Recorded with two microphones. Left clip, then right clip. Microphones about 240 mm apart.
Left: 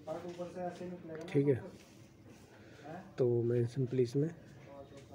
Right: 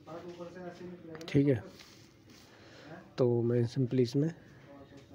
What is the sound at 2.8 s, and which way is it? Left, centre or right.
Speech, right.